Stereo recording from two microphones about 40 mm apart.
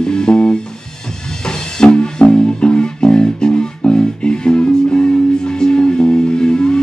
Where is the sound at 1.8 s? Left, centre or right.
Left.